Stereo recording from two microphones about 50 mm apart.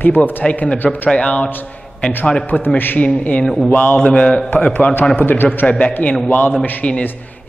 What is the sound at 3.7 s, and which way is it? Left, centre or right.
A man's voice, left.